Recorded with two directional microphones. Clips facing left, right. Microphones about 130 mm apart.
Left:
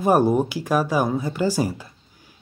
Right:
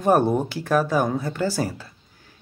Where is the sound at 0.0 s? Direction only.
10° left (ahead or behind).